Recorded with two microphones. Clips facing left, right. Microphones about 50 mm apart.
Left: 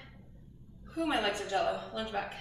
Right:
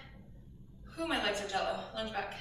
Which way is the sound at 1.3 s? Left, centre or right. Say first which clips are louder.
Left 3 dB; centre.